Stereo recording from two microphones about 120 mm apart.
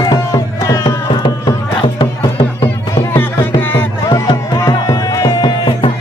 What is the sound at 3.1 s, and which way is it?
Music, 20° left (ahead or behind).